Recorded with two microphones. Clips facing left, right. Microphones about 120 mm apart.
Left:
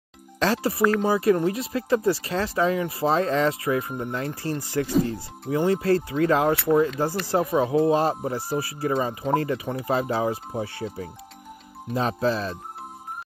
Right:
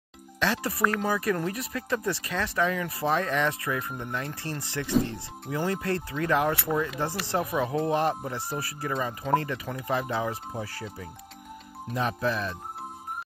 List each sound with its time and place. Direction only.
0.4 s speech: 35° left (ahead or behind)